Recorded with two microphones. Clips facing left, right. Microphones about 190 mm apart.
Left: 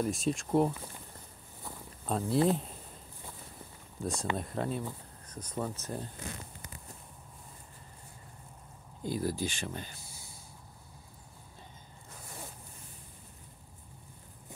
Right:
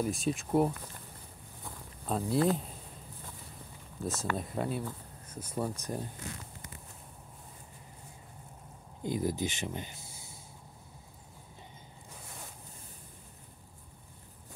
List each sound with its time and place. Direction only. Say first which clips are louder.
0.0 s speech: even; centre (ahead or behind)
1.6 s walk: left 2 dB; centre (ahead or behind)
4.0 s speech: even; centre (ahead or behind)
9.0 s speech: right 1 dB; 20° right (ahead or behind)